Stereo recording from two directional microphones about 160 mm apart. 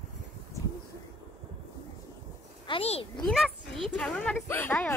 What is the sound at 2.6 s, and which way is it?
Speech, 35° left (ahead or behind).